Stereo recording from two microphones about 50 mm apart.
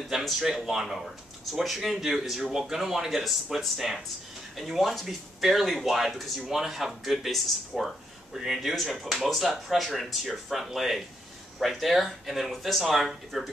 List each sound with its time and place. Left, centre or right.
0.1 s speech: centre